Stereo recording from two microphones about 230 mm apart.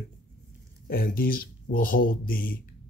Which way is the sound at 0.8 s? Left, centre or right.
Left.